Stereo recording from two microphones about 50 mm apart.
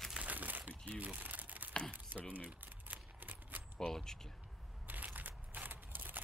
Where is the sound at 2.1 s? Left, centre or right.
Right.